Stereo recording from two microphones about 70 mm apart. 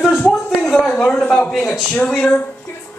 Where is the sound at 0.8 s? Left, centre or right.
Centre.